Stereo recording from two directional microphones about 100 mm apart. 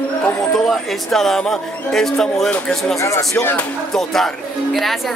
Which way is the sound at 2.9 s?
30° left (ahead or behind).